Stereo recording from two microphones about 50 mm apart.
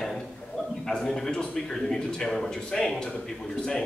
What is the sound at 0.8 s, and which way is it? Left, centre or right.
Speech, centre.